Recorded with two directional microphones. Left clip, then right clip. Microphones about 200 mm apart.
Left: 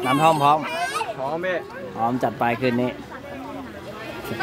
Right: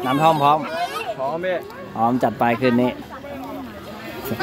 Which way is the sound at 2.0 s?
20° right (ahead or behind).